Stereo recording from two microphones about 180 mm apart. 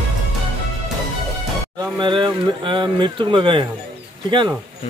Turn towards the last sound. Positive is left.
turn(degrees=-25)  # may be behind; listen again after turning